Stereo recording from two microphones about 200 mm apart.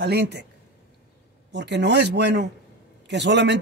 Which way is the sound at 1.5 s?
60° right (ahead or behind).